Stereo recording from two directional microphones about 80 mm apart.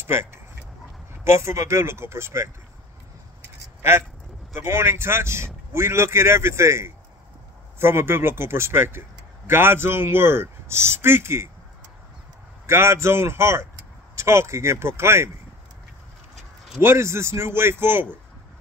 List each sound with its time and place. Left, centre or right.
0.0 s speech: right
4.6 s speech: right
12.6 s speech: right
16.8 s speech: right